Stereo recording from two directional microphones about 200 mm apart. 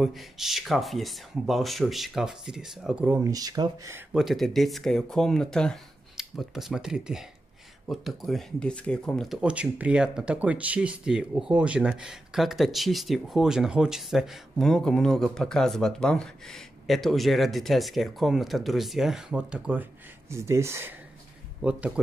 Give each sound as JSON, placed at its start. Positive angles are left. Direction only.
{"t": 0.0, "sound": "speech", "side_deg": 0}
{"t": 3.3, "sound": "speech", "side_deg": -20}
{"t": 4.1, "sound": "speech", "side_deg": 0}